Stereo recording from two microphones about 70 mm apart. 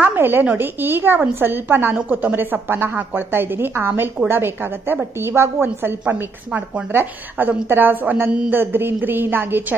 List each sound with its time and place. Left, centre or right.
0.0 s a woman's voice: right